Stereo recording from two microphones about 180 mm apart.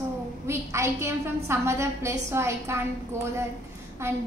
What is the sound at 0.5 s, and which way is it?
A woman's voice, 15° right (ahead or behind).